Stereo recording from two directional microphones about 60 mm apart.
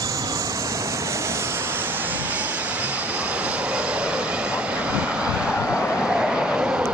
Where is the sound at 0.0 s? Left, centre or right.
Right.